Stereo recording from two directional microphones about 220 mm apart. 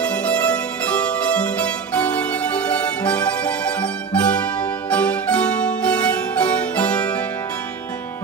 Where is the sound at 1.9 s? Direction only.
5° left (ahead or behind).